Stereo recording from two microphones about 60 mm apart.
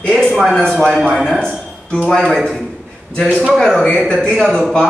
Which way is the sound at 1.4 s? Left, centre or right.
Centre.